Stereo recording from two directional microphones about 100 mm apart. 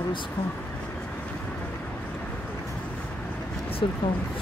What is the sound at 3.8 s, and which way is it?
Speech, 55° left (ahead or behind).